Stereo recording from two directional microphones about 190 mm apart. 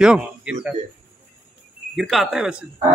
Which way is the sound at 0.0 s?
5° right (ahead or behind).